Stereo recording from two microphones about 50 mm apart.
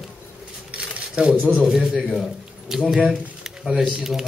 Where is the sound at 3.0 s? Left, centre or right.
Centre.